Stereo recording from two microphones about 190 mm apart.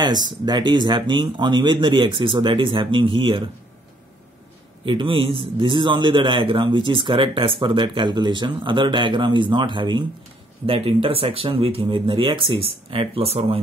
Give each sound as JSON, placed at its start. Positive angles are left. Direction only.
{"t": 0.0, "sound": "a man's voice", "side_deg": -20}
{"t": 4.8, "sound": "a man's voice", "side_deg": -25}